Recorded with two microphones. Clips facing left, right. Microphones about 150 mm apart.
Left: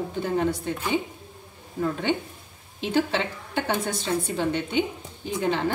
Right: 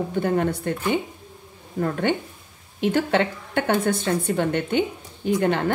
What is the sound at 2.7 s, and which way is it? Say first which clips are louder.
Speech: right 4 dB; 55° right (ahead or behind).